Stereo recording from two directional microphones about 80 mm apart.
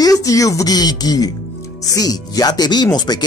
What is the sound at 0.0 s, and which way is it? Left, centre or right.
Speech, left.